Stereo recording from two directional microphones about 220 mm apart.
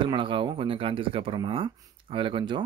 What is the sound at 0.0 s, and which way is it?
Speech, 20° right (ahead or behind).